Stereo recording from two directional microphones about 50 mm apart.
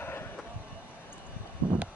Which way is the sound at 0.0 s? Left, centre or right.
Left.